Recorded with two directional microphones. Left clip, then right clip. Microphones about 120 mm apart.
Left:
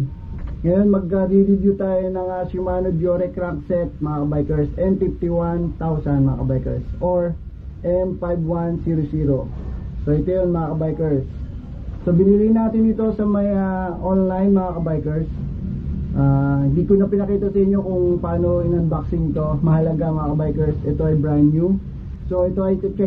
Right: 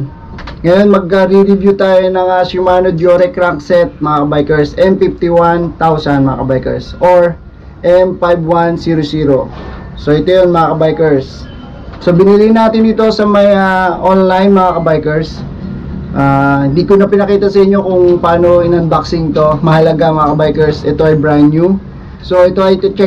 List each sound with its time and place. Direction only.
0.7 s speech: 25° right (ahead or behind)